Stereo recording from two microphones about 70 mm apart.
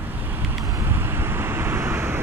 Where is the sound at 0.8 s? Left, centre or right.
Right.